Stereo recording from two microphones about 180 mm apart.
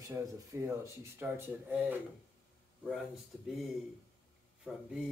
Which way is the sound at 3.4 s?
Centre (ahead or behind).